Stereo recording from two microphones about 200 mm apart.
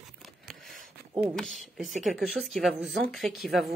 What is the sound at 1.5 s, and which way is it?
Speech, centre (ahead or behind).